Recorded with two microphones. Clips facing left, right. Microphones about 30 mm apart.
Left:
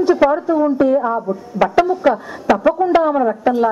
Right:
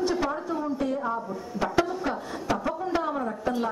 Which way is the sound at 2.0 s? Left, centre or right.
Left.